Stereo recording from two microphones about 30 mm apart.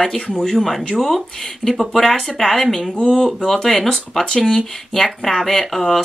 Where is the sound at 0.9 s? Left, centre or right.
Centre.